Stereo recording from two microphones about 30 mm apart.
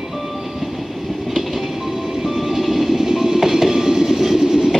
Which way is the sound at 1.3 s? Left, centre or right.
Centre.